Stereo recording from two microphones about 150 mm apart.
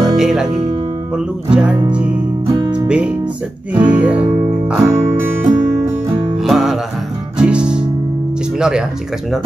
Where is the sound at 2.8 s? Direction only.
5° right (ahead or behind).